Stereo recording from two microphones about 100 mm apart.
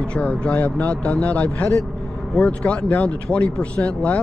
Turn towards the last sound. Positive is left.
turn(degrees=10)  # may be behind; listen again after turning